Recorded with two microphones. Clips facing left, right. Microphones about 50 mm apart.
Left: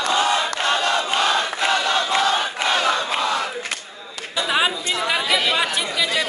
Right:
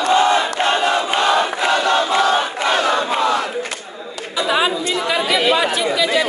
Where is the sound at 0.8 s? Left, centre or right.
Centre.